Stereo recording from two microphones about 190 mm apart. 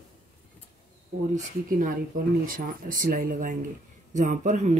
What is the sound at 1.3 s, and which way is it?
Speech, 45° right (ahead or behind).